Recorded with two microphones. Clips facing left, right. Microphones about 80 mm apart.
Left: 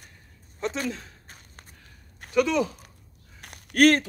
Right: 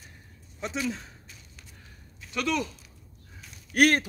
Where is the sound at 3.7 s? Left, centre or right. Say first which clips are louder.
Left 3 dB; centre.